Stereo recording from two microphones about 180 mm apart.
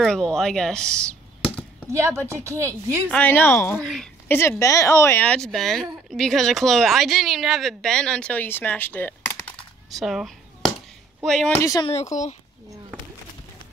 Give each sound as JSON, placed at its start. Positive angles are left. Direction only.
{"t": 0.0, "sound": "a woman's voice", "side_deg": 5}
{"t": 1.9, "sound": "speech", "side_deg": -15}
{"t": 3.1, "sound": "a woman's voice", "side_deg": 10}
{"t": 4.4, "sound": "a woman's voice", "side_deg": 15}
{"t": 9.9, "sound": "a sound", "side_deg": 0}
{"t": 11.2, "sound": "a woman's voice", "side_deg": 5}
{"t": 11.6, "sound": "speech", "side_deg": 20}
{"t": 11.9, "sound": "speech", "side_deg": 40}